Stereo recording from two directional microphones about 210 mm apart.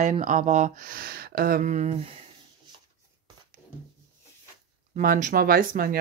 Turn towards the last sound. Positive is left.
turn(degrees=-40)  # may be behind; listen again after turning